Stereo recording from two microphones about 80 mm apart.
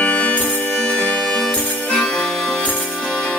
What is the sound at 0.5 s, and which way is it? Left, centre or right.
Music, left.